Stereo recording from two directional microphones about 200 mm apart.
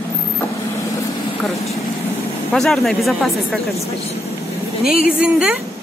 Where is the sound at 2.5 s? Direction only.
Centre (ahead or behind).